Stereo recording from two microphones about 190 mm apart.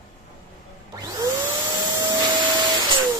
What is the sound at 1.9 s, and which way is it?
Vacuum cleaner, 20° right (ahead or behind).